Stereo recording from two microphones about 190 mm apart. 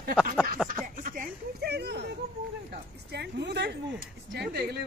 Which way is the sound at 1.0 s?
45° right (ahead or behind).